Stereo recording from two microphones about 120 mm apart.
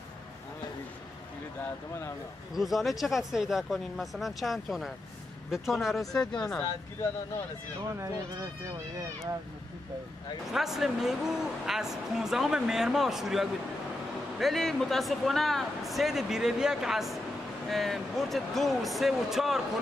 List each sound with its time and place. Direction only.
2.5 s speech: centre (ahead or behind)
7.9 s speech: 25° right (ahead or behind)
10.5 s speech: 5° right (ahead or behind)